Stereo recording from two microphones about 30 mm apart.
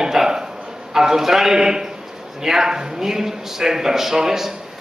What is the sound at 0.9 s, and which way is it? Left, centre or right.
A man's voice, centre.